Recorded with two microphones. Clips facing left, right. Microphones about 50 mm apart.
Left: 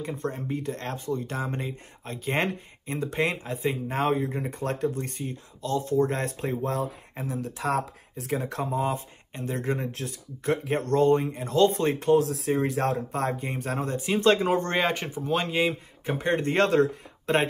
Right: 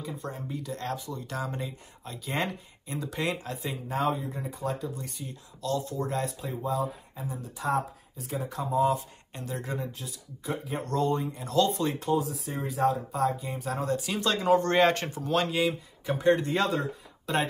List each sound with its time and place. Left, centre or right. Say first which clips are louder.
0.0 s speech: left 5 dB; left
5.6 s speech: left 6 dB; left
8.6 s speech: right 7 dB; left
9.8 s speech: left 6 dB; left
12.2 s speech: left 7 dB; left
13.8 s speech: left 7 dB; left
14.8 s speech: right 3 dB; centre; by 16.8 s left
17.3 s speech: left 4 dB; left